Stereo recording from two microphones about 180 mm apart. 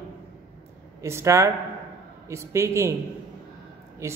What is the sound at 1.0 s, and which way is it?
A man's voice, 15° right (ahead or behind).